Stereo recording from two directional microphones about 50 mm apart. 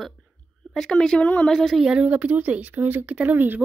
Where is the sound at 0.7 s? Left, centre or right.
Centre.